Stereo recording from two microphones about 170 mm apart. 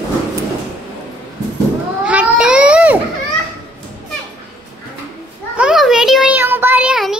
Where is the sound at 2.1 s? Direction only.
5° right (ahead or behind).